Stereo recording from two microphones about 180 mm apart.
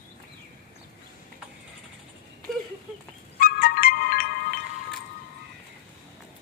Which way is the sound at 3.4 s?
55° left (ahead or behind).